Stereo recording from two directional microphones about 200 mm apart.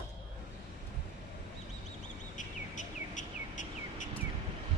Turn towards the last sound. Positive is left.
turn(degrees=40)  # may be behind; listen again after turning